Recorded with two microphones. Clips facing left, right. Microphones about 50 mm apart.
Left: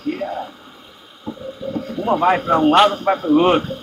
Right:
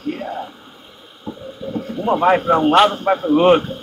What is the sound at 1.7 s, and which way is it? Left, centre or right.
A man's voice, right.